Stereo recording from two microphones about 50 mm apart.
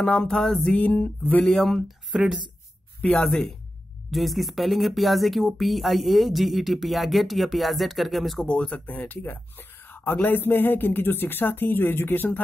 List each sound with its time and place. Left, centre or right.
0.0 s music: centre
0.7 s a sound: left
1.4 s speech: centre
4.1 s speech: centre
8.5 s speech: left
8.8 s speech: left